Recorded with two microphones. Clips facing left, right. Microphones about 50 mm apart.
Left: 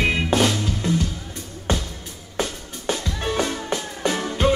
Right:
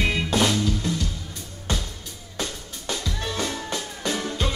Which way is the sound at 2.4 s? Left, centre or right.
Left.